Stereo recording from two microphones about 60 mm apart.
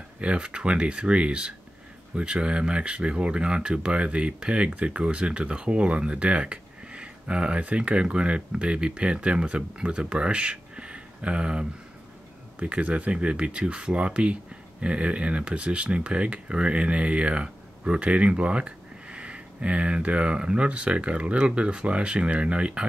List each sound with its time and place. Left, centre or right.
0.2 s speech: centre